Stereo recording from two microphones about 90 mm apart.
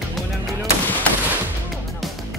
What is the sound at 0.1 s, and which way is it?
Gunshot, centre (ahead or behind).